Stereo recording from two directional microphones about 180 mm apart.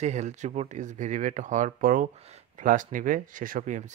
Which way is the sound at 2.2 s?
35° right (ahead or behind).